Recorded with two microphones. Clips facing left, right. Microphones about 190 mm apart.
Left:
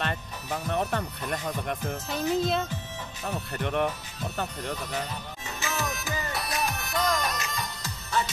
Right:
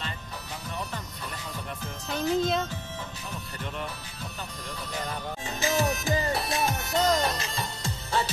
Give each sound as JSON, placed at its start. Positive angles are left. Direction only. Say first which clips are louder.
{"t": 0.7, "sound": "music", "louder": "left 8 dB", "side_deg": 65}
{"t": 2.0, "sound": "speech", "louder": "right 1 dB", "side_deg": 0}
{"t": 3.3, "sound": "speech", "louder": "left 11 dB", "side_deg": 60}
{"t": 5.6, "sound": "music", "louder": "right 6 dB", "side_deg": -30}